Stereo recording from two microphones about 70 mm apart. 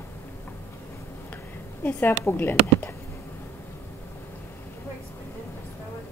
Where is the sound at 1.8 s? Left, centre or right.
Left.